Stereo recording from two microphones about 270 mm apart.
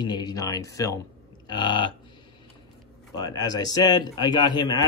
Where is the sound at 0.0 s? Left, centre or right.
Centre.